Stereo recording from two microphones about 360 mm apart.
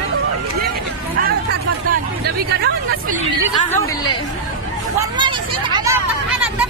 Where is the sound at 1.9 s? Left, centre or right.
Right.